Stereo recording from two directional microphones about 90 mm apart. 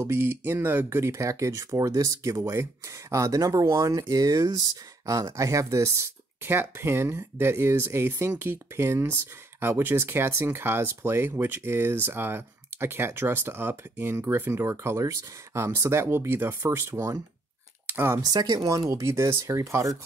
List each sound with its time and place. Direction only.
0.0 s speech: 25° right (ahead or behind)
17.8 s a sound: 25° right (ahead or behind)
18.1 s speech: 40° right (ahead or behind)